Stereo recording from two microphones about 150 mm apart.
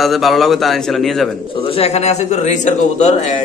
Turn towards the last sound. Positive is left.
turn(degrees=50)  # may be behind; listen again after turning